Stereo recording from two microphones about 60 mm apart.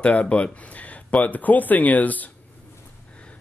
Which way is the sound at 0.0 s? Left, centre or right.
Left.